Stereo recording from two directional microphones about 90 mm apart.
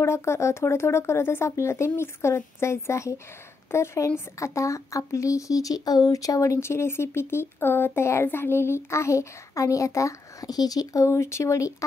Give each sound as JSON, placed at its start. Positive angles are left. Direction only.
{"t": 0.0, "sound": "speech", "side_deg": 30}